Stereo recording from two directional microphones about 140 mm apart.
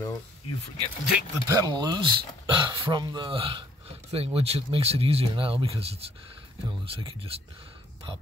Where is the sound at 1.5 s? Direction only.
25° right (ahead or behind).